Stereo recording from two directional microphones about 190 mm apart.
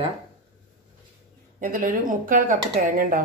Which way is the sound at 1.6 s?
45° right (ahead or behind).